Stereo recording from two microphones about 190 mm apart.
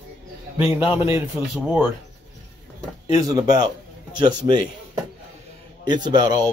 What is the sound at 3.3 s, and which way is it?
Speech, 20° right (ahead or behind).